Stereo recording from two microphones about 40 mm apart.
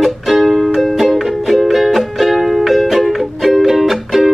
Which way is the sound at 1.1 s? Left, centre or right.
Centre.